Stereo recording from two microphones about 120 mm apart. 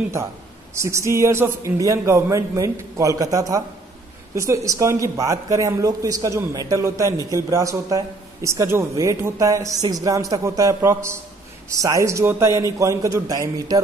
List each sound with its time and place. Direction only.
0.7 s speech: 25° right (ahead or behind)